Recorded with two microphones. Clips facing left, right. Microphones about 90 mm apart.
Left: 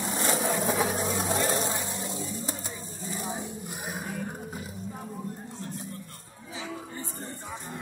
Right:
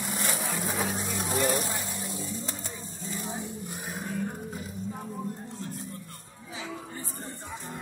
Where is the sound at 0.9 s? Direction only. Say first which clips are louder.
Left 4 dB; 40° left (ahead or behind).